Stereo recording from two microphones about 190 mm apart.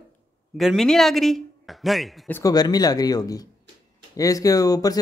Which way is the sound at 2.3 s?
20° left (ahead or behind).